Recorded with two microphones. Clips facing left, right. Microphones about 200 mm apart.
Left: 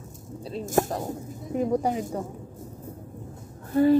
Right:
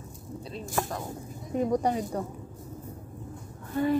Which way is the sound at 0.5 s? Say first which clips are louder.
Left 7 dB; 45° left (ahead or behind).